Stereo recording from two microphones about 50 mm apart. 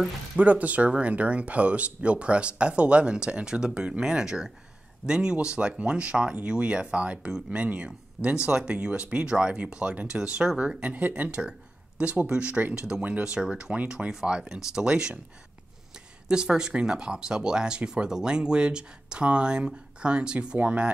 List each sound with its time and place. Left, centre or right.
0.4 s speech: right
16.3 s speech: centre